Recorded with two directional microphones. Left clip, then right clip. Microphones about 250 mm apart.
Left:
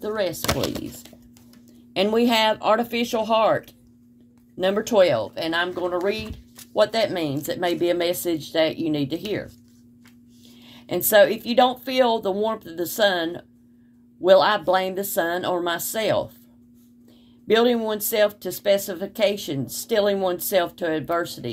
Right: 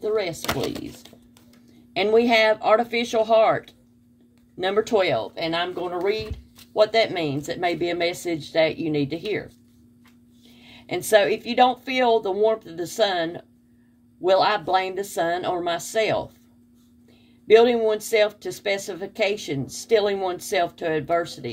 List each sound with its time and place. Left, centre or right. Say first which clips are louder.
0.0 s speech: right 1 dB; left
0.4 s speech: left 2 dB; left
2.0 s speech: right 2 dB; left
4.6 s speech: left 2 dB; left
11.0 s speech: left 2 dB; left
14.8 s speech: left 1 dB; left
17.5 s speech: right 3 dB; left